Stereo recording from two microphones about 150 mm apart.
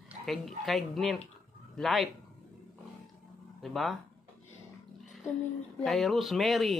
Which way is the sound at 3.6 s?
Centre (ahead or behind).